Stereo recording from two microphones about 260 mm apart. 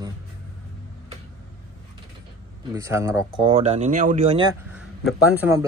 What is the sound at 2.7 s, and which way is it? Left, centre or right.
Speech, centre.